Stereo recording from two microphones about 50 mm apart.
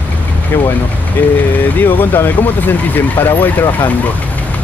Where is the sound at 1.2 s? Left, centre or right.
Left.